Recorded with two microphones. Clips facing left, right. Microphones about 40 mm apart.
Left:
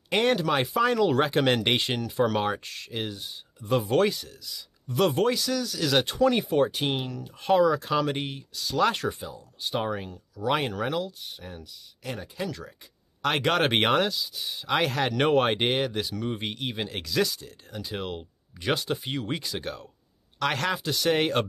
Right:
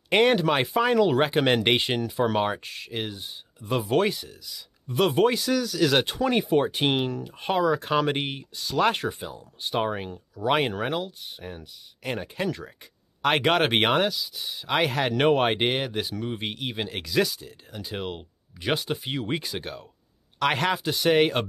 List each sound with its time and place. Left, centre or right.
0.1 s speech: right
6.8 s speech: right
7.5 s speech: centre
7.8 s speech: right
9.2 s speech: right
10.5 s speech: right
11.3 s speech: centre
12.0 s speech: right
13.2 s speech: right
13.6 s speech: centre
19.6 s speech: centre
20.8 s speech: centre